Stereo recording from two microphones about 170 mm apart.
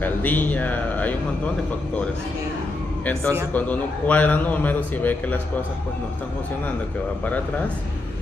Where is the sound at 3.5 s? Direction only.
10° left (ahead or behind).